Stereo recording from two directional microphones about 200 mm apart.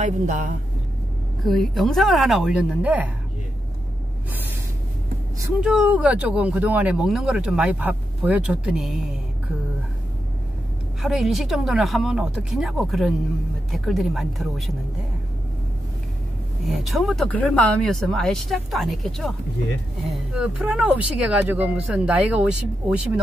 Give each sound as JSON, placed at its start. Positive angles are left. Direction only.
{"t": 0.0, "sound": "speech", "side_deg": -40}
{"t": 1.5, "sound": "speech", "side_deg": 0}
{"t": 5.6, "sound": "speech", "side_deg": -5}
{"t": 11.0, "sound": "speech", "side_deg": 0}
{"t": 16.6, "sound": "speech", "side_deg": 0}